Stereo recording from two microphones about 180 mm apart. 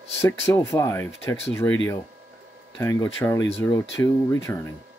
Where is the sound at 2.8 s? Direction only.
10° left (ahead or behind).